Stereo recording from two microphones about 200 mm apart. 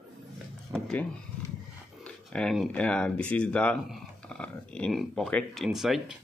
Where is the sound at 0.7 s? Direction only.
5° left (ahead or behind).